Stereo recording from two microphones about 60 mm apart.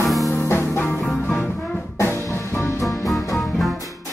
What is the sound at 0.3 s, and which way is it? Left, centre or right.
Music, left.